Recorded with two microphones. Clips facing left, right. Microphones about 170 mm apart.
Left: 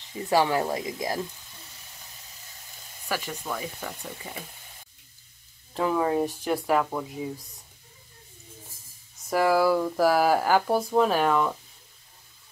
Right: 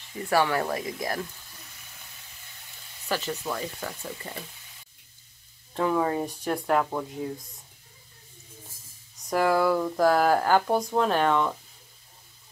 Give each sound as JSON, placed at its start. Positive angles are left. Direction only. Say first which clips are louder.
{"t": 0.1, "sound": "speech", "louder": "left 1 dB", "side_deg": 20}
{"t": 3.1, "sound": "speech", "louder": "right 2 dB", "side_deg": 10}
{"t": 5.8, "sound": "speech", "louder": "left 1 dB", "side_deg": 5}
{"t": 9.3, "sound": "speech", "louder": "left 1 dB", "side_deg": 5}